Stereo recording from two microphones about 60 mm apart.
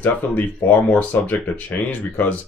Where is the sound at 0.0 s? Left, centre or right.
Left.